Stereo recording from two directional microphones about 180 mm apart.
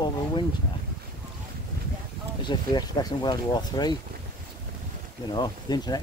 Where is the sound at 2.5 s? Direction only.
25° left (ahead or behind).